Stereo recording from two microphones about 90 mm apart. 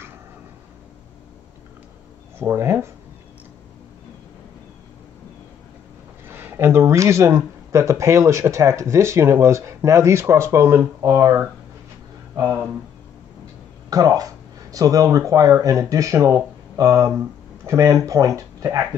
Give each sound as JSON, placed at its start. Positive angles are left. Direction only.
{"t": 2.3, "sound": "speech", "side_deg": -25}
{"t": 6.2, "sound": "speech", "side_deg": -25}
{"t": 13.8, "sound": "speech", "side_deg": -40}